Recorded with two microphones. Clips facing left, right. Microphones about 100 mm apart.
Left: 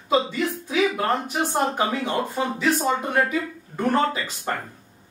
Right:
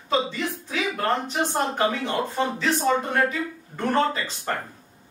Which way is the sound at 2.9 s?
10° left (ahead or behind).